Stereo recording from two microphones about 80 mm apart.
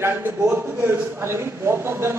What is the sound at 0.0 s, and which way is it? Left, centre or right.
A woman's voice, right.